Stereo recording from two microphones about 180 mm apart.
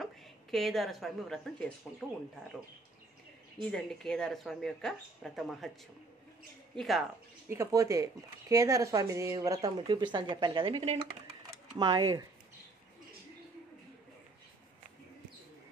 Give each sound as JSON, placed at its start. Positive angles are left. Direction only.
{"t": 0.0, "sound": "a woman's voice", "side_deg": 0}
{"t": 3.6, "sound": "speech", "side_deg": 5}
{"t": 6.7, "sound": "speech", "side_deg": 0}
{"t": 7.4, "sound": "speech", "side_deg": -15}
{"t": 11.5, "sound": "a sound", "side_deg": -20}